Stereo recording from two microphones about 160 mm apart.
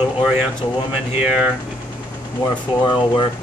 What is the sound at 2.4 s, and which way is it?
Speech, 30° left (ahead or behind).